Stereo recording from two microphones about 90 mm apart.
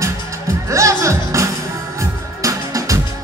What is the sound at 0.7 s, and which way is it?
Music, 35° right (ahead or behind).